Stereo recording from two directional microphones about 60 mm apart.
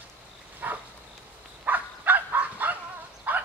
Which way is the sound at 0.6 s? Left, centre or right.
Right.